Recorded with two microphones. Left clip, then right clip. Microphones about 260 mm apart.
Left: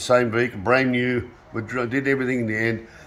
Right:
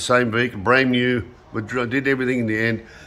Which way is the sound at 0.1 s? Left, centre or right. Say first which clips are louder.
Even; centre.